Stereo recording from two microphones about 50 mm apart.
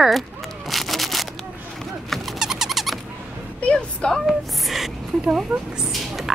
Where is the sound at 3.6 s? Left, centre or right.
Centre.